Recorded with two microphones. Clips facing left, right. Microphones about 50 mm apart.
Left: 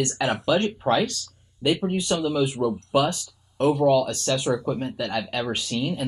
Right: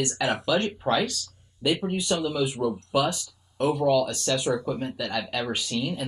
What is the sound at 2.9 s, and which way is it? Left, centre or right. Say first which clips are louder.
Speech: left 3 dB; centre.